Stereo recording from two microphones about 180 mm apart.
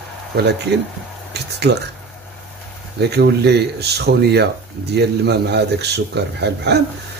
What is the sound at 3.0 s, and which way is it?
A man's voice, 65° right (ahead or behind).